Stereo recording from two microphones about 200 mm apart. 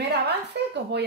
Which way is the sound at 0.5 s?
60° right (ahead or behind).